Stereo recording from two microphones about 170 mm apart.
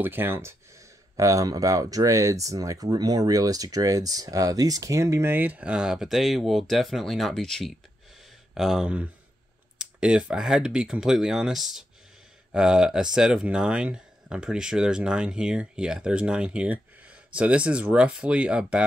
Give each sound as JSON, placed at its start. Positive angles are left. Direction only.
{"t": 0.0, "sound": "speech", "side_deg": -10}